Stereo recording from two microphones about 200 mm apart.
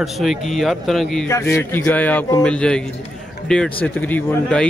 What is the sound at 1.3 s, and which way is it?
A man's voice, 10° left (ahead or behind).